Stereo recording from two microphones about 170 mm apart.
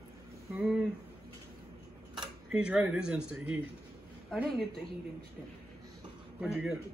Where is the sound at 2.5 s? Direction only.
5° right (ahead or behind).